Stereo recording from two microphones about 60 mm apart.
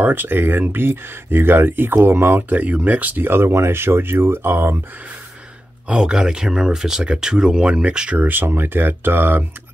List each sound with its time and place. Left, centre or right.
0.0 s speech: right
2.5 s speech: right
5.9 s speech: centre
8.2 s speech: right